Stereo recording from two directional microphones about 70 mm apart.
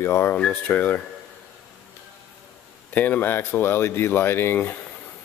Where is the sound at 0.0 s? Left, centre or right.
Left.